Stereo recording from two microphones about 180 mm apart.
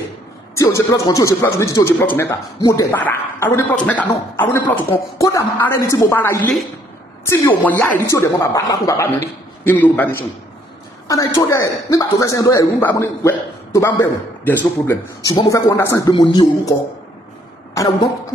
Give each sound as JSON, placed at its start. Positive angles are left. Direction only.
{"t": 0.6, "sound": "speech", "side_deg": 15}
{"t": 16.1, "sound": "speech", "side_deg": 25}
{"t": 17.7, "sound": "speech", "side_deg": 20}